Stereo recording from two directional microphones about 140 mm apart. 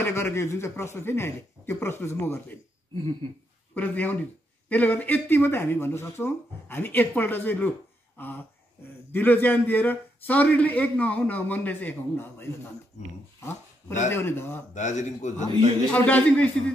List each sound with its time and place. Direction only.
0.0 s a man's voice: 20° left (ahead or behind)
3.7 s a man's voice: 10° left (ahead or behind)
9.1 s a man's voice: 15° left (ahead or behind)
13.4 s a sound: 15° left (ahead or behind)
14.1 s a man's voice: 15° left (ahead or behind)
14.7 s speech: 60° left (ahead or behind)
15.9 s a man's voice: 10° left (ahead or behind)